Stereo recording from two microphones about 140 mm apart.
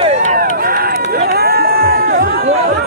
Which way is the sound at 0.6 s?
90° right.